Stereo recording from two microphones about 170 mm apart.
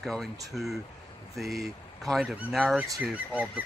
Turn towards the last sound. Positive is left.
turn(degrees=-10)  # may be behind; listen again after turning